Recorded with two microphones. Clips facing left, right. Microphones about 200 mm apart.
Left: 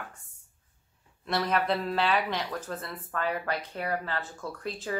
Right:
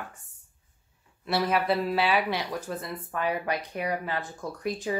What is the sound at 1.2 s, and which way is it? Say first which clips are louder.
A woman's voice: right 2 dB; 5° right (ahead or behind).